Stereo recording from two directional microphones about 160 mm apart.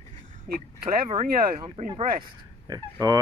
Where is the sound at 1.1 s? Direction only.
40° right (ahead or behind).